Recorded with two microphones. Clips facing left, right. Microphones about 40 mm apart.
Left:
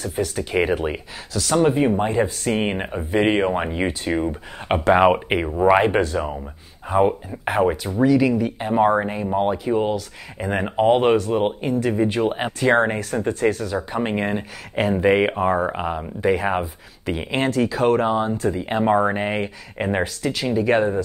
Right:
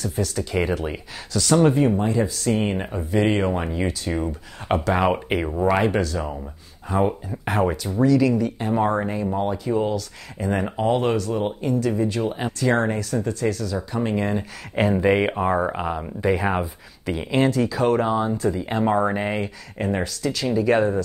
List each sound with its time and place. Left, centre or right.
0.0 s speech: left
1.3 s speech: centre
2.0 s speech: left
15.0 s speech: centre
15.7 s speech: centre
18.0 s speech: centre